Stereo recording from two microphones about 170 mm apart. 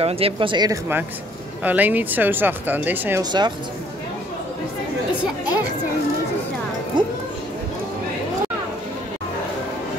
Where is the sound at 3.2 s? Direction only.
25° right (ahead or behind).